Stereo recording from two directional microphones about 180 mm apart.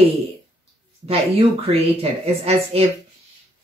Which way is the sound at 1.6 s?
35° right (ahead or behind).